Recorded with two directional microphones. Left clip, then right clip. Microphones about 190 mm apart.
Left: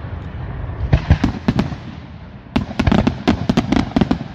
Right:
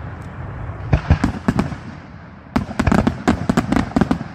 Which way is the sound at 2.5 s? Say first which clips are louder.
Even; centre (ahead or behind).